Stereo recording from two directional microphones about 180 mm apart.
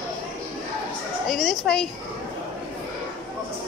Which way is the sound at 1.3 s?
Centre (ahead or behind).